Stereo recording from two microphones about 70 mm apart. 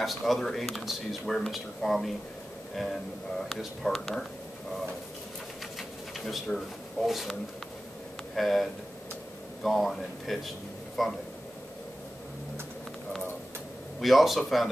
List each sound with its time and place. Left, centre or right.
0.0 s speech: centre
5.8 s sewing machine: centre
7.1 s speech: centre
8.4 s speech: centre
14.0 s speech: centre